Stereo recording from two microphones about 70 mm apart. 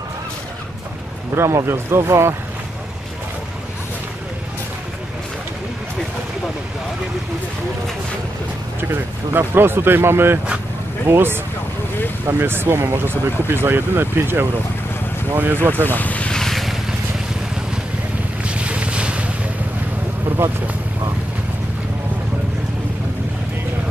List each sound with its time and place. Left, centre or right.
1.3 s speech: right
8.8 s speech: right
15.7 s vehicle: left; by 16.7 s centre
18.4 s boat: centre
20.3 s vehicle: right